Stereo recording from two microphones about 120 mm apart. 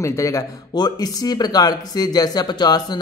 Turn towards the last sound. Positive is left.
turn(degrees=35)  # may be behind; listen again after turning